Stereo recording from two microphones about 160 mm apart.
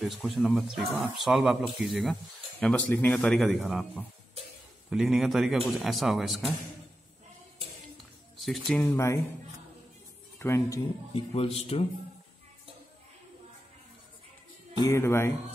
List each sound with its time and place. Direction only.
0.0 s speech: centre (ahead or behind)
4.8 s speech: centre (ahead or behind)
8.4 s speech: centre (ahead or behind)
8.8 s speech: 15° left (ahead or behind)
10.4 s speech: 15° left (ahead or behind)
11.3 s a man's voice: 40° left (ahead or behind)
14.9 s speech: 15° left (ahead or behind)